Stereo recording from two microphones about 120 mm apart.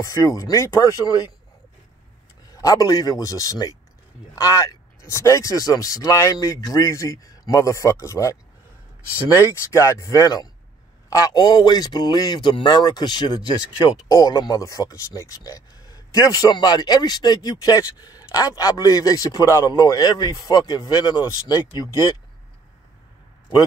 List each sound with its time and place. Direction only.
0.0 s speech: 25° left (ahead or behind)
2.5 s speech: 30° left (ahead or behind)
9.4 s speech: 25° left (ahead or behind)